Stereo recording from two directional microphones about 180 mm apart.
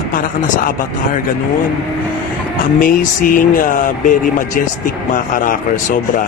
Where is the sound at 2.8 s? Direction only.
50° left (ahead or behind).